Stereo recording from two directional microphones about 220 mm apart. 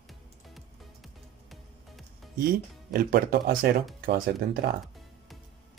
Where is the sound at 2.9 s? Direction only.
40° right (ahead or behind).